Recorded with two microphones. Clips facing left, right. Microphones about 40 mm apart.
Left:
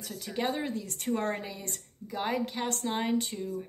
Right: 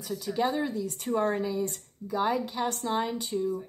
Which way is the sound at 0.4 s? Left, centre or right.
Left.